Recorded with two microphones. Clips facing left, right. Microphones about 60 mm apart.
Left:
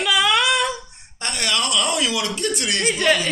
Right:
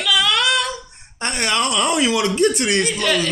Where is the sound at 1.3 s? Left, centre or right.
Right.